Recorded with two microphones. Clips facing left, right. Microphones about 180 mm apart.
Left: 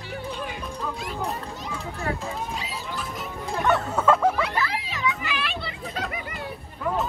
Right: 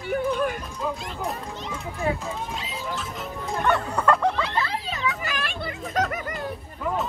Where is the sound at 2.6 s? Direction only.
Centre (ahead or behind).